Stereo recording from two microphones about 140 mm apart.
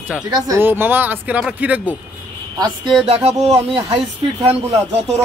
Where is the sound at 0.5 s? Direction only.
15° right (ahead or behind).